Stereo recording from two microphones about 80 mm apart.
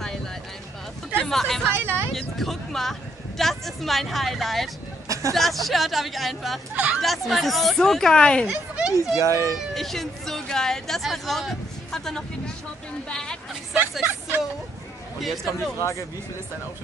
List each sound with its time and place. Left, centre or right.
1.1 s hubbub: centre
1.7 s vehicle: right
2.1 s speech: centre
5.0 s a sound: right
5.3 s speech: centre
6.7 s speech: centre
7.0 s speech: centre
8.5 s a sound: centre
9.1 s speech: right
9.8 s a woman's voice: centre
15.1 s speech: centre
15.8 s speech: left